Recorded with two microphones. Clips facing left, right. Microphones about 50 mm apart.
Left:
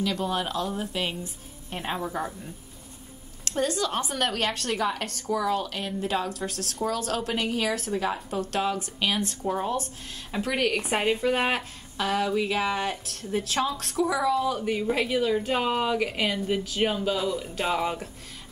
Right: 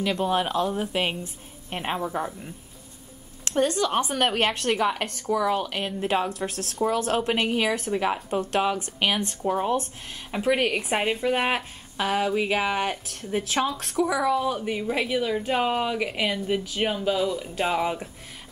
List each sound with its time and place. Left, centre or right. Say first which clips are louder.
0.0 s a woman's voice: right 3 dB; right
1.9 s a woman's voice: right 2 dB; centre
3.4 s a woman's voice: right 4 dB; right
4.7 s a woman's voice: right 3 dB; right
5.8 s a woman's voice: right 3 dB; right
10.8 s speech: even; centre
12.0 s a woman's voice: right 1 dB; right; by 18.0 s centre